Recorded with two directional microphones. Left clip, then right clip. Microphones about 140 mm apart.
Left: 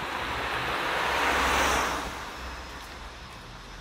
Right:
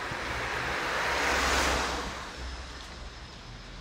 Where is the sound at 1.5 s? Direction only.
45° left (ahead or behind).